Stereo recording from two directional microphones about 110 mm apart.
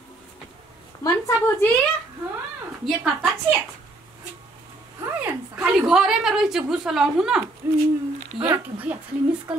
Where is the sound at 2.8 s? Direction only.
Centre (ahead or behind).